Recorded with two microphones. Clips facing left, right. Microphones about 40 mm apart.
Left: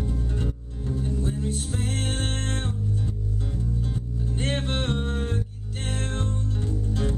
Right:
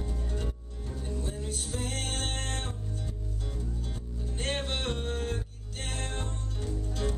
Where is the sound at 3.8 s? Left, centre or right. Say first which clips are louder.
Left 9 dB; centre.